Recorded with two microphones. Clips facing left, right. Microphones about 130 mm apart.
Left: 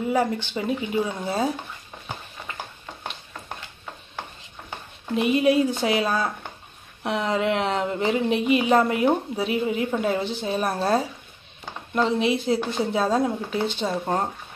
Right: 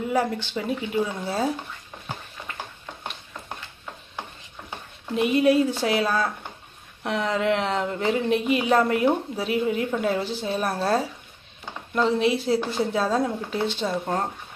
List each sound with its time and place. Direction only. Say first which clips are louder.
0.5 s speech: left 1 dB; centre (ahead or behind)
5.1 s speech: even; centre (ahead or behind)